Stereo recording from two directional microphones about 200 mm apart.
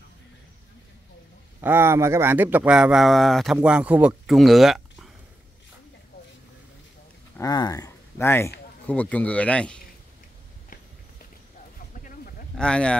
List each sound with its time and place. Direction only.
1.6 s speech: 10° right (ahead or behind)
7.3 s a man's voice: 20° left (ahead or behind)
12.5 s speech: 5° left (ahead or behind)